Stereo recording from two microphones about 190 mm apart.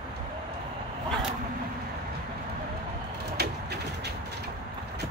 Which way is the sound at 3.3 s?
60° right (ahead or behind).